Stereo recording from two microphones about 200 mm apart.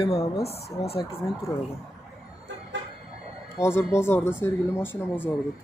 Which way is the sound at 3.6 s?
15° left (ahead or behind).